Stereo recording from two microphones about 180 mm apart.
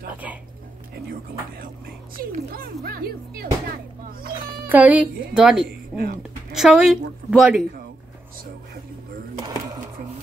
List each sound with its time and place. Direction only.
2.5 s speech: 60° right (ahead or behind)
4.6 s a woman's voice: 10° right (ahead or behind)
5.7 s a sound: 60° right (ahead or behind)
6.5 s a woman's voice: 5° right (ahead or behind)